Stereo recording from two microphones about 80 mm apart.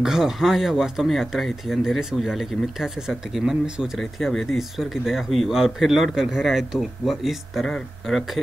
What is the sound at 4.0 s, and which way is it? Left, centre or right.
Speech, centre.